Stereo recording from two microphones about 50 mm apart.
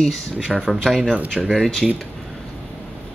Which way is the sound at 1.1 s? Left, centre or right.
Right.